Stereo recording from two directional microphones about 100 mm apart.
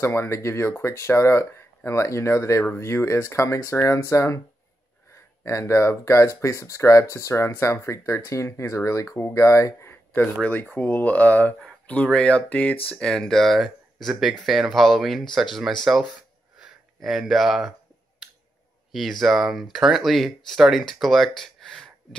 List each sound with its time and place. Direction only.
0.0 s speech: 25° left (ahead or behind)
5.4 s speech: 30° left (ahead or behind); by 17.7 s centre (ahead or behind)
18.9 s speech: centre (ahead or behind)